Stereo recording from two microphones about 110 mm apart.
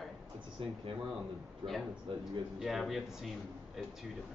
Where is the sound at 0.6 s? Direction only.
55° right (ahead or behind).